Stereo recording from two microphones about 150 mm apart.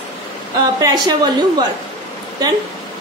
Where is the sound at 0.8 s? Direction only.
30° right (ahead or behind).